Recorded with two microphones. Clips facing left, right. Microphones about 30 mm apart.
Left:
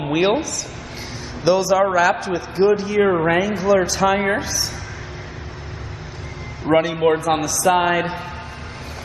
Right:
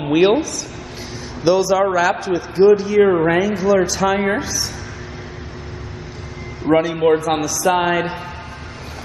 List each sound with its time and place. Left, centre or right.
0.0 s a woman's voice: centre
6.6 s a man's voice: centre